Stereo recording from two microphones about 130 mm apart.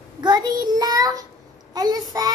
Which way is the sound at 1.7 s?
30° right (ahead or behind).